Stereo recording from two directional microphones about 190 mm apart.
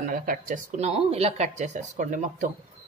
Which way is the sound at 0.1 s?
45° right (ahead or behind).